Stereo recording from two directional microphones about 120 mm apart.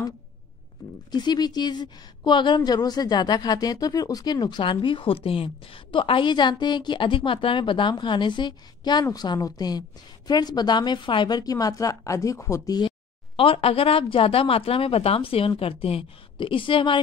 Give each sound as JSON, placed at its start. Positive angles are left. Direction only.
{"t": 1.1, "sound": "a woman's voice", "side_deg": 35}
{"t": 13.4, "sound": "a woman's voice", "side_deg": 50}